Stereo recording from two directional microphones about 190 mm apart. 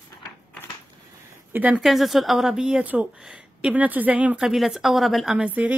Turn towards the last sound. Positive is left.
turn(degrees=-5)  # may be behind; listen again after turning